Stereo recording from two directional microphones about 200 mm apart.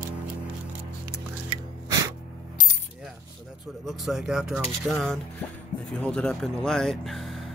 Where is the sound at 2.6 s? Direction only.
40° left (ahead or behind).